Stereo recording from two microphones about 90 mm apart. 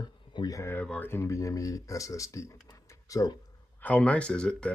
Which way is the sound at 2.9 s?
40° left (ahead or behind).